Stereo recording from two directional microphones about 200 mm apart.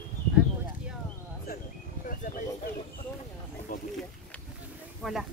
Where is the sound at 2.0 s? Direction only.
40° left (ahead or behind).